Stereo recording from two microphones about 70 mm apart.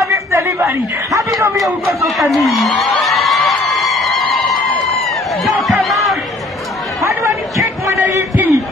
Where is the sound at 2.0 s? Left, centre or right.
Centre.